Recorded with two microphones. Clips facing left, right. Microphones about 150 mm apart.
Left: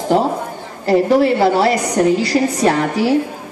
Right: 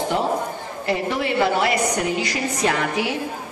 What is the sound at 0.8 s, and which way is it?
A woman's voice, 40° left (ahead or behind).